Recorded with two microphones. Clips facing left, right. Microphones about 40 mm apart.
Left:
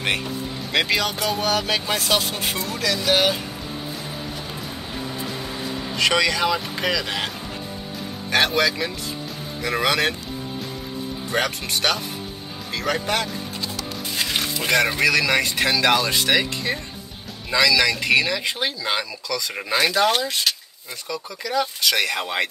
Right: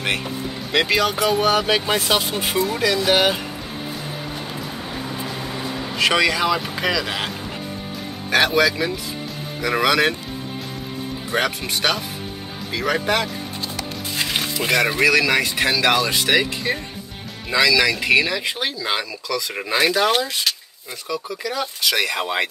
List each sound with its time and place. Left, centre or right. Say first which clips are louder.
0.7 s speech: right 3 dB; centre; by 3.3 s right
5.4 s a sound: right 2 dB; centre
5.9 s speech: right 2 dB; centre
11.4 s speech: right 1 dB; centre